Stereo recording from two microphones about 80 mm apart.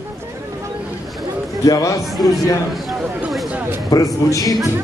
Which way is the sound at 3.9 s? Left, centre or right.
Left.